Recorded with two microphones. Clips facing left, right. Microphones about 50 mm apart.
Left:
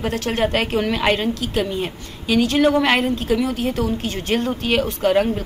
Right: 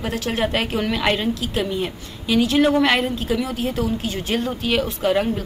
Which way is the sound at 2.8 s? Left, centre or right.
Centre.